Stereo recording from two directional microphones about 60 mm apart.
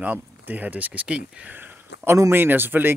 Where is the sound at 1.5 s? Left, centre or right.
Right.